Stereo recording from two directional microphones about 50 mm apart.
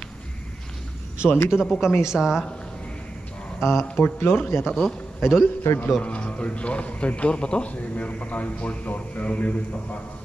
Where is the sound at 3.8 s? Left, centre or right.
Left.